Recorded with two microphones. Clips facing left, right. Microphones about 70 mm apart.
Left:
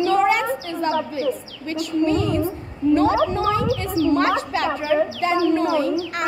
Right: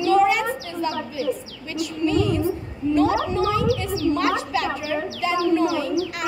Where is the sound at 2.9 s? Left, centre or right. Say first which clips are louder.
Left 2 dB; left.